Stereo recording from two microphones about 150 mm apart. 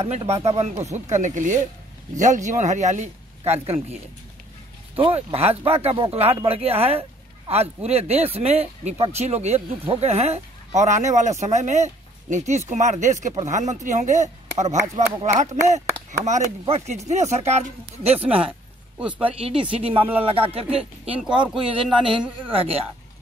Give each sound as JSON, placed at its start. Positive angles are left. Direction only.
{"t": 0.0, "sound": "speech", "side_deg": -45}
{"t": 18.1, "sound": "speech", "side_deg": -10}
{"t": 19.4, "sound": "speech", "side_deg": -35}
{"t": 22.5, "sound": "speech", "side_deg": -40}